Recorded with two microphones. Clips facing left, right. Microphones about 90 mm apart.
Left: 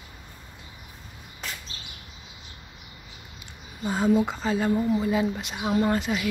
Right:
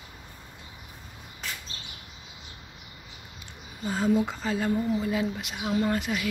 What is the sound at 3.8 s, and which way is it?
Speech, 20° left (ahead or behind).